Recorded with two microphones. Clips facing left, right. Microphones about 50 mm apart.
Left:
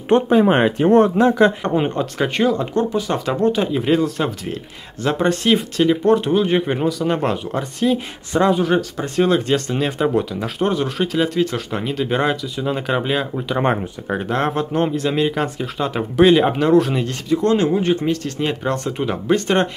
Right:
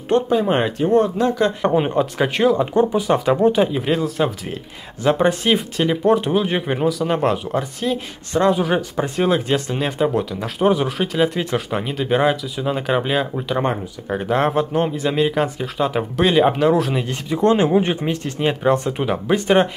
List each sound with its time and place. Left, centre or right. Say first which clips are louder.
0.1 s speech: left 3 dB; left
0.8 s speech: left 3 dB; left
1.1 s speech: left 4 dB; left
1.6 s speech: right 2 dB; centre
8.5 s speech: left 2 dB; centre
8.9 s speech: right 1 dB; centre
9.2 s speech: left 3 dB; centre
14.3 s speech: right 3 dB; centre
17.1 s speech: right 1 dB; right